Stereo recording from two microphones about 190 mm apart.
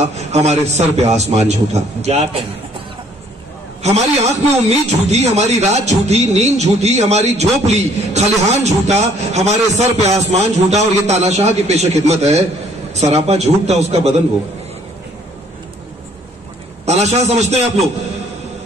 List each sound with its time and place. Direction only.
0.0 s speech: 35° right (ahead or behind)
3.8 s speech: 35° right (ahead or behind)
16.8 s a man's voice: 35° right (ahead or behind)